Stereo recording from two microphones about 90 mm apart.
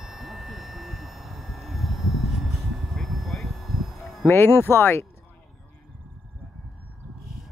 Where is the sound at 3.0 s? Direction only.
5° left (ahead or behind).